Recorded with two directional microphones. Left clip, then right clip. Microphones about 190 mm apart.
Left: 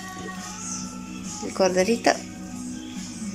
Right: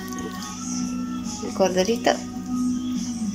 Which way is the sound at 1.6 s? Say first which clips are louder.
Even; centre (ahead or behind).